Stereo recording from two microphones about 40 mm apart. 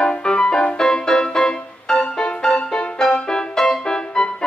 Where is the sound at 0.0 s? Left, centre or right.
Left.